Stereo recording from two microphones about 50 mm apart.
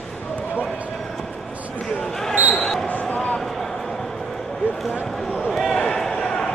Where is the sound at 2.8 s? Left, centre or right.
Left.